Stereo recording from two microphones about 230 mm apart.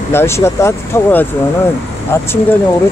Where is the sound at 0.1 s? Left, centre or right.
Centre.